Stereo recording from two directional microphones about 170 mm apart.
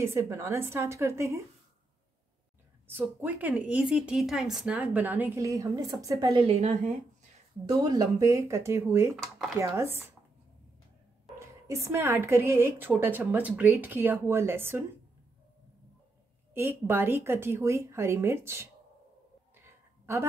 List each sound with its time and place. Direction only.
0.0 s a woman's voice: 15° right (ahead or behind)
3.0 s a woman's voice: 10° right (ahead or behind)
7.6 s a woman's voice: 20° right (ahead or behind)
9.1 s speech: centre (ahead or behind)
9.6 s a woman's voice: 15° right (ahead or behind)
11.3 s a woman's voice: 15° right (ahead or behind)
16.5 s a woman's voice: 15° right (ahead or behind)
19.5 s a sound: 15° right (ahead or behind)